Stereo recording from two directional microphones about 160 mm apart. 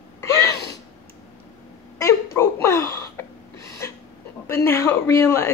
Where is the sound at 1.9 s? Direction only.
15° left (ahead or behind).